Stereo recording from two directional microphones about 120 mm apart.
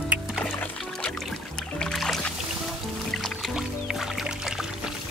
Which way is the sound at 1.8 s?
5° left (ahead or behind).